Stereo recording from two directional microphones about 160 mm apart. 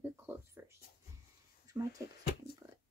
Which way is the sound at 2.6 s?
15° right (ahead or behind).